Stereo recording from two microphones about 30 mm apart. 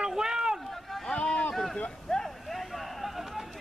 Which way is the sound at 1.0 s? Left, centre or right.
Left.